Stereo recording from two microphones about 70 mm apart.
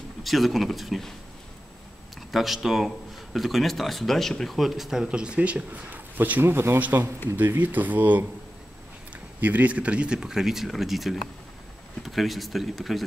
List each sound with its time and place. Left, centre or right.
0.2 s speech: centre
2.3 s speech: centre; by 6.8 s right
6.8 s speech: right
9.4 s speech: right; by 13.0 s centre